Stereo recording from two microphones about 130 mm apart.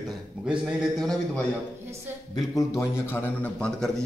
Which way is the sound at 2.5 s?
25° left (ahead or behind).